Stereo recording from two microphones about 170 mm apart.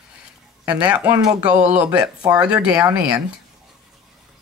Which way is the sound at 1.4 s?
5° right (ahead or behind).